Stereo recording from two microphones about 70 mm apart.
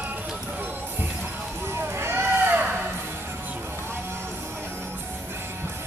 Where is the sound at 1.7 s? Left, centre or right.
Right.